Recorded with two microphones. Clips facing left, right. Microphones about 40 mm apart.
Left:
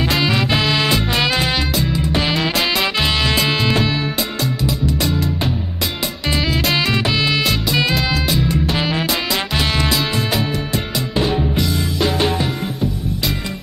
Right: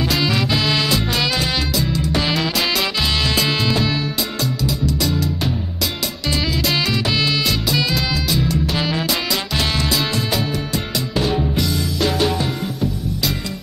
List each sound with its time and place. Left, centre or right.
0.1 s music: centre
5.0 s music: centre
6.2 s music: left
6.7 s music: centre
7.3 s music: left
7.9 s music: centre